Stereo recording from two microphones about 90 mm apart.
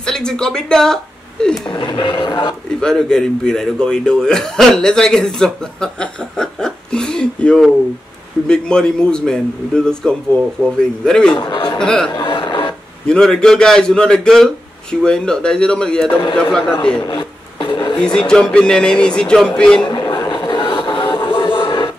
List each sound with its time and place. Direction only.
0.0 s speech: 5° left (ahead or behind)
1.7 s speech: 65° left (ahead or behind)
2.8 s speech: 5° left (ahead or behind)
11.3 s speech: 55° left (ahead or behind)
11.8 s speech: 10° left (ahead or behind)
12.2 s a sound: 60° left (ahead or behind)
13.0 s speech: 10° left (ahead or behind)
17.1 s a sound: 65° left (ahead or behind)
17.9 s speech: 10° left (ahead or behind)
19.9 s a sound: 50° left (ahead or behind)
21.3 s music: 65° left (ahead or behind)